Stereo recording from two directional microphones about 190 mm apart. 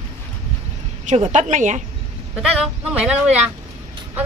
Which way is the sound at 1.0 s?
35° right (ahead or behind).